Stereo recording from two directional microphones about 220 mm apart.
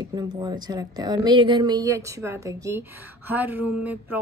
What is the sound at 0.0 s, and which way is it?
Speech, 20° right (ahead or behind).